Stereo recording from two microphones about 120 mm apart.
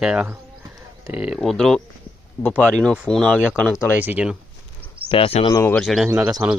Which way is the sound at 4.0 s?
15° right (ahead or behind).